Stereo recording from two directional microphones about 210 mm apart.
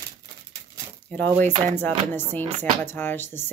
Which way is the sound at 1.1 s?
10° left (ahead or behind).